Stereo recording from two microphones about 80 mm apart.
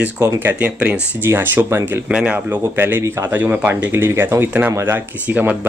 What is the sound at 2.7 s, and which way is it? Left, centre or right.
Speech, right.